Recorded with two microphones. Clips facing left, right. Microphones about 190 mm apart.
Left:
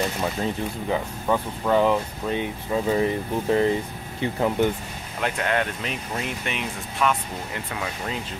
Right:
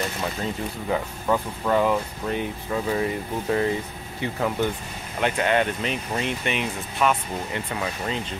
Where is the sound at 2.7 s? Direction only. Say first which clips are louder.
Left 3 dB; 20° left (ahead or behind).